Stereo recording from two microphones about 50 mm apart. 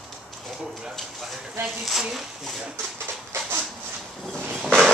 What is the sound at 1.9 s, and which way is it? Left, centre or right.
Speech, centre.